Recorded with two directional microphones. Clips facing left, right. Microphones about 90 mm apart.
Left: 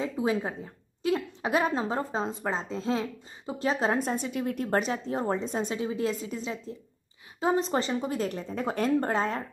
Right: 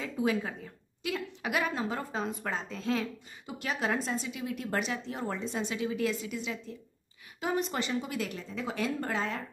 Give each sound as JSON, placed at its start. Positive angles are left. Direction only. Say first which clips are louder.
{"t": 0.0, "sound": "a woman's voice", "louder": "left 3 dB", "side_deg": 25}
{"t": 4.0, "sound": "a woman's voice", "louder": "left 5 dB", "side_deg": 50}